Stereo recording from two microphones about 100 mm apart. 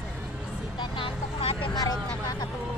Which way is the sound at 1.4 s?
80° left.